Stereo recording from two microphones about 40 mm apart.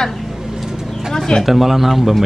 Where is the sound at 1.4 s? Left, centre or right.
Centre.